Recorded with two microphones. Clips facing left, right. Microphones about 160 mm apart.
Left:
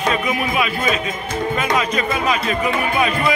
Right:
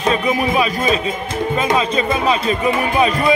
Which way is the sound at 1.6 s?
30° right (ahead or behind).